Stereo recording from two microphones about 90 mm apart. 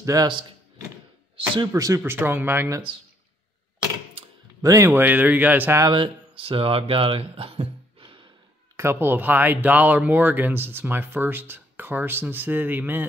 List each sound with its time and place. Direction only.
0.0 s speech: 40° right (ahead or behind)
1.7 s speech: 35° right (ahead or behind)
2.1 s speech: 25° right (ahead or behind)
4.6 s speech: 35° right (ahead or behind); by 5.8 s 20° right (ahead or behind)
5.9 s speech: 80° right
8.7 s speech: 25° right (ahead or behind)